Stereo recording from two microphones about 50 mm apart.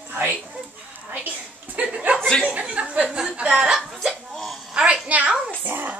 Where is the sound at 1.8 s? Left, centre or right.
Right.